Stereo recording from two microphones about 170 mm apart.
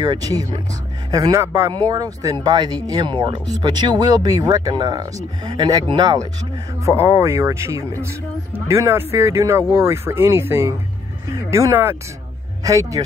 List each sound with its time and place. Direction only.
0.0 s speech: 25° right (ahead or behind)